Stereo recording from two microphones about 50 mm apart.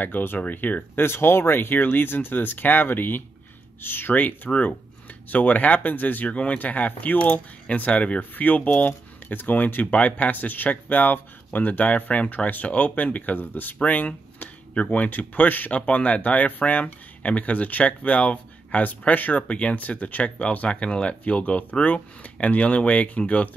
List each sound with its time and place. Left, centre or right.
0.0 s speech: left
1.0 s speech: left